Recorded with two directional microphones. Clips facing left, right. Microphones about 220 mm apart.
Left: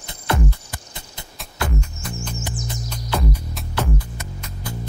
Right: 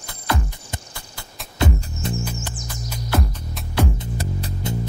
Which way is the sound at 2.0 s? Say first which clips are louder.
Right 6 dB; 25° right (ahead or behind).